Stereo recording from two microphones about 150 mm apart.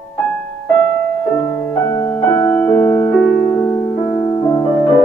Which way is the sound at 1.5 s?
15° left (ahead or behind).